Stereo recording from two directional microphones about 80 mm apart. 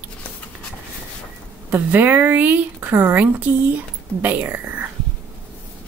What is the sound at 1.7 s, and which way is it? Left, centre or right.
Speech, right.